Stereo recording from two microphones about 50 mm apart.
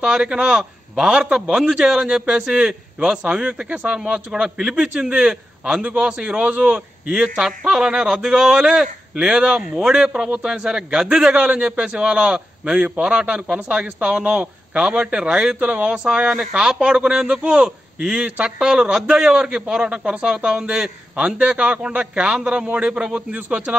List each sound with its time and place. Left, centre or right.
0.0 s a man's voice: centre
5.8 s a man's voice: right
9.3 s a man's voice: right
9.8 s a man's voice: centre
11.3 s a man's voice: right
15.9 s a man's voice: centre